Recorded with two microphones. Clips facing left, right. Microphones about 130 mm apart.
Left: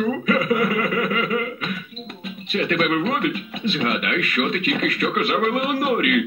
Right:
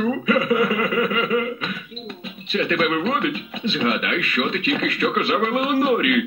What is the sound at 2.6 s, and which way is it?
A man's voice, 25° right (ahead or behind).